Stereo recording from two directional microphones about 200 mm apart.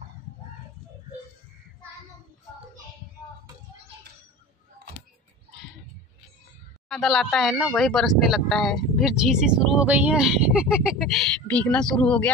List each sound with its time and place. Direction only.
6.9 s speech: centre (ahead or behind)